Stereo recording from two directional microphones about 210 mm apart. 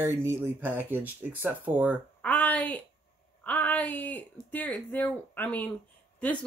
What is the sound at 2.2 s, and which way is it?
Speech, 5° left (ahead or behind).